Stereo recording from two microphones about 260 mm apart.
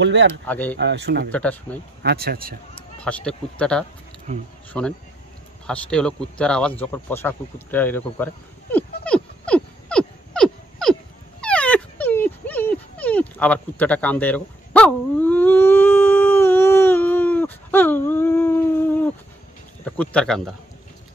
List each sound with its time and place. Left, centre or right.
0.0 s speech: right
0.3 s speech: centre
0.7 s speech: right
1.3 s speech: centre
2.0 s speech: right
3.0 s speech: centre
4.3 s speech: right
4.7 s speech: centre
8.7 s a sound: centre
11.4 s dog: centre
19.8 s speech: centre